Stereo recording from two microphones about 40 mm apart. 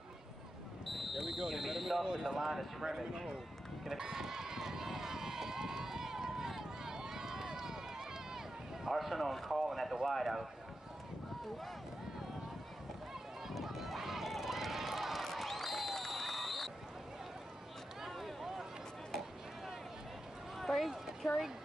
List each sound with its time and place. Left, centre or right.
0.8 s speech: centre
2.0 s speech: centre
4.0 s run: centre
8.8 s speech: centre
13.5 s run: centre
18.0 s a sound: centre
20.7 s a sound: centre